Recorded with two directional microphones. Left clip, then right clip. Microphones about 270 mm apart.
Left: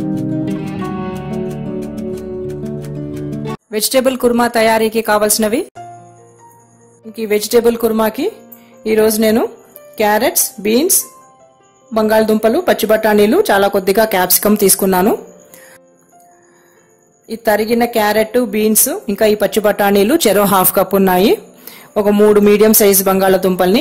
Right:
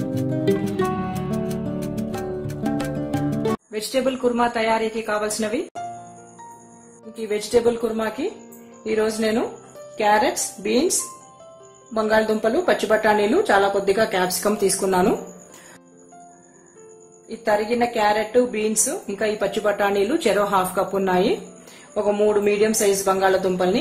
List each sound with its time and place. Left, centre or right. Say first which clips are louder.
0.1 s music: left 2 dB; centre
3.7 s a woman's voice: left 13 dB; left
7.2 s a woman's voice: left 9 dB; left
8.8 s a woman's voice: left 9 dB; left
11.9 s a woman's voice: left 7 dB; left
17.5 s a woman's voice: left 7 dB; left